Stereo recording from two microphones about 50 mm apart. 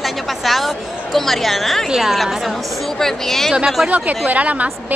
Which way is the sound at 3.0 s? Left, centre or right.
Centre.